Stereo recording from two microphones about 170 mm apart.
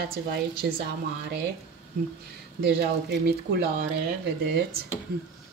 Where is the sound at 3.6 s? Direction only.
70° right (ahead or behind).